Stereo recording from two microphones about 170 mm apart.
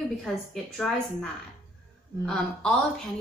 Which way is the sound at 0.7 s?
5° left (ahead or behind).